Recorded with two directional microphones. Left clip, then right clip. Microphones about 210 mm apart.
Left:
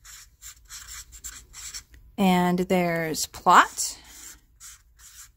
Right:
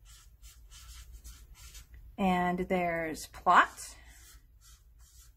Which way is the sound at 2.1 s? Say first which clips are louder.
Left 6 dB; 45° left (ahead or behind).